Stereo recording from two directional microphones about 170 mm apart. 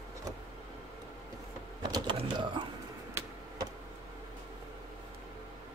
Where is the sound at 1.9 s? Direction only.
25° right (ahead or behind).